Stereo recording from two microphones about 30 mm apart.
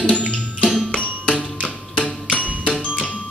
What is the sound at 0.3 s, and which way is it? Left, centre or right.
Music, left.